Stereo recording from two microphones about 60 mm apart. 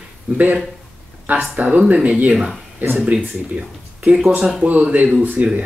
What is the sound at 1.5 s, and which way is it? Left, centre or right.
Speech, right.